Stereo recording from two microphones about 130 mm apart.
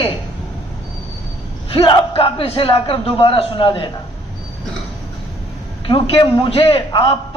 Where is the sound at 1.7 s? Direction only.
45° left (ahead or behind).